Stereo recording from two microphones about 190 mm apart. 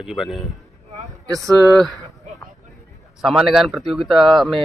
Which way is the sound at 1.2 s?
20° right (ahead or behind).